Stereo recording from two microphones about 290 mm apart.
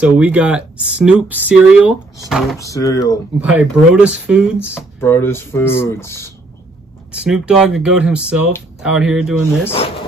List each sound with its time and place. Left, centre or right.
0.0 s speech: centre
2.6 s speech: centre
3.3 s speech: centre
5.0 s speech: centre
7.1 s speech: centre
9.8 s speech: centre